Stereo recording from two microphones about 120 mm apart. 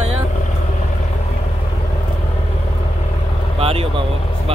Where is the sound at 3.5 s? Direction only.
55° right (ahead or behind).